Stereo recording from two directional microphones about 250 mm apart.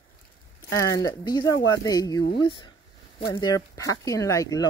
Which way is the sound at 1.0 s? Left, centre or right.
Centre.